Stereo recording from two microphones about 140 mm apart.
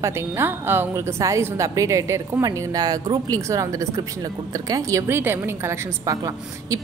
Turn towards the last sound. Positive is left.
turn(degrees=-25)  # may be behind; listen again after turning